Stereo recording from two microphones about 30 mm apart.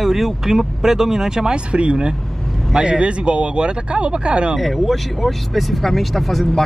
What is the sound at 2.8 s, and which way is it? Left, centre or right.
Speech, right.